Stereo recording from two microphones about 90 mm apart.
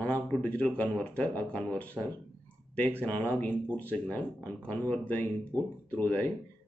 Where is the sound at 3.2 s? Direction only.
20° left (ahead or behind).